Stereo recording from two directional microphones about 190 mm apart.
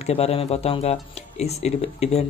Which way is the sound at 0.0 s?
30° left (ahead or behind).